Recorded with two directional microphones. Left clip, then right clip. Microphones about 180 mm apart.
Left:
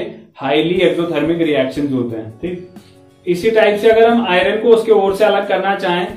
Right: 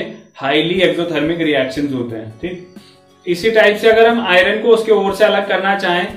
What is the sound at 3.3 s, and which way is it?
Speech, 5° left (ahead or behind).